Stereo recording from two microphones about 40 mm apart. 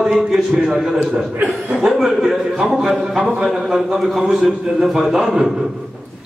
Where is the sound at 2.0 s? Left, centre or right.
Centre.